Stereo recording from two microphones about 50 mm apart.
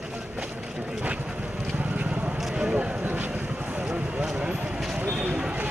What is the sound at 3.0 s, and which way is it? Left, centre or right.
Boat, right.